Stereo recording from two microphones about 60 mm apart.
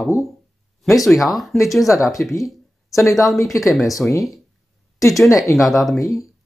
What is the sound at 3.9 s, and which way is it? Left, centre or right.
Speech, left.